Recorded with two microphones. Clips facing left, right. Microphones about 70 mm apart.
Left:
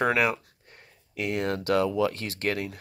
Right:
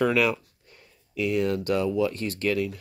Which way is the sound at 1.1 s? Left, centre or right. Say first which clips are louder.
Right 4 dB; left.